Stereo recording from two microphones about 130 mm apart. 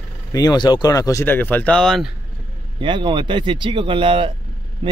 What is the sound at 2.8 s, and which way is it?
Speech, 40° right (ahead or behind).